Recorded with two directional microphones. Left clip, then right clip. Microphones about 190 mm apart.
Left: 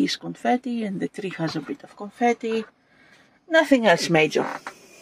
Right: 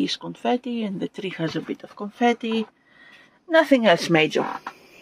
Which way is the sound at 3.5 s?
Centre (ahead or behind).